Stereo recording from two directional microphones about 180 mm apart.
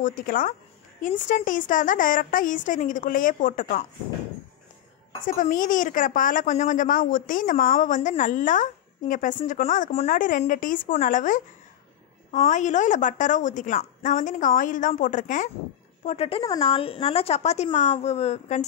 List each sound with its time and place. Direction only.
0.0 s a woman's voice: 50° left (ahead or behind)
5.2 s a woman's voice: 50° left (ahead or behind)
16.1 s a woman's voice: 35° left (ahead or behind)